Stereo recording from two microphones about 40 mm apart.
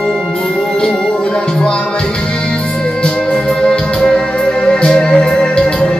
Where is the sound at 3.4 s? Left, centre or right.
Centre.